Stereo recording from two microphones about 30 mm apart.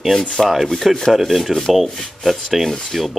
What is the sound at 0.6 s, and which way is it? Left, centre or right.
Rub, centre.